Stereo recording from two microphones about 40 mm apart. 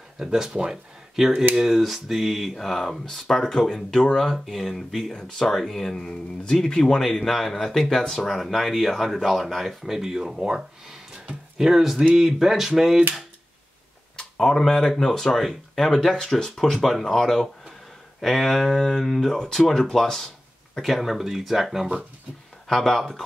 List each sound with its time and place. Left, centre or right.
0.2 s a sound: centre
1.1 s speech: centre
5.9 s speech: left
6.8 s speech: centre
11.5 s a sound: centre
14.4 s speech: centre
16.7 s speech: centre
20.8 s speech: centre
22.7 s speech: centre